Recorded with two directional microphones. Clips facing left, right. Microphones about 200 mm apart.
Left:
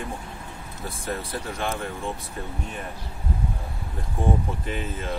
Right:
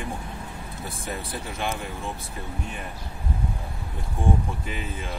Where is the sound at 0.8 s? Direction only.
Centre (ahead or behind).